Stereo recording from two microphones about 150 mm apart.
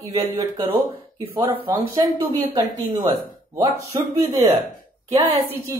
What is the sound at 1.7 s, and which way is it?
A woman's voice, 25° right (ahead or behind).